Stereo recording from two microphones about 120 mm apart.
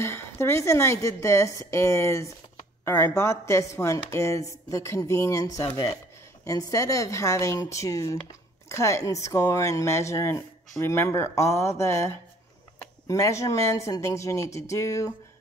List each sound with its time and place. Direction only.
0.0 s a woman's voice: 20° left (ahead or behind)